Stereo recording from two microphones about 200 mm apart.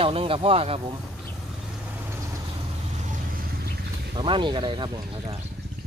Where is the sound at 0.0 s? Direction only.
30° right (ahead or behind).